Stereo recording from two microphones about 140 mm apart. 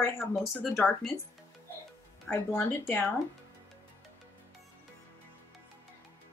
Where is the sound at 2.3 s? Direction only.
15° left (ahead or behind).